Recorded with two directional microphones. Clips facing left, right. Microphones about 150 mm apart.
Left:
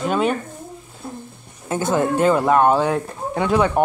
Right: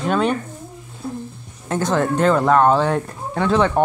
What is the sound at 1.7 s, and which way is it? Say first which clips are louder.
Speech: even; 5° left (ahead or behind).